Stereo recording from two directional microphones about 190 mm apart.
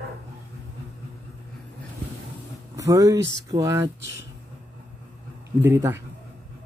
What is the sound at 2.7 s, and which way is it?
Speech, 20° right (ahead or behind).